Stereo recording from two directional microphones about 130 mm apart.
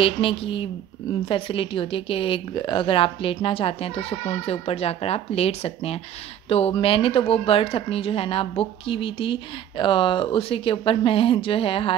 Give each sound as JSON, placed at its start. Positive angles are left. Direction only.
{"t": 0.0, "sound": "a woman's voice", "side_deg": 45}